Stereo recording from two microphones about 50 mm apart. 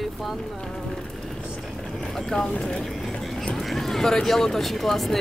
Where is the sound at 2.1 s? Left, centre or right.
Centre.